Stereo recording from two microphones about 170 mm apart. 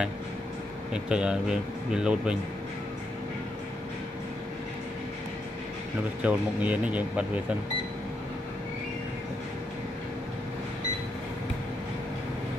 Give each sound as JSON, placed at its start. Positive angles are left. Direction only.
{"t": 0.9, "sound": "speech", "side_deg": -5}
{"t": 6.2, "sound": "speech", "side_deg": -5}